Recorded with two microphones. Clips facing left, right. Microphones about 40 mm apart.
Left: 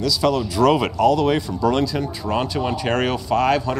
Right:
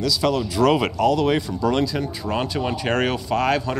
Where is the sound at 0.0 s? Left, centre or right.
Right; by 2.4 s centre.